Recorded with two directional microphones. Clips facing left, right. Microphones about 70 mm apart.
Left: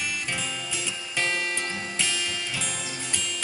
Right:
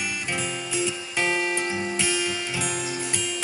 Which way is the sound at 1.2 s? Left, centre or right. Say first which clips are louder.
Right 5 dB; centre.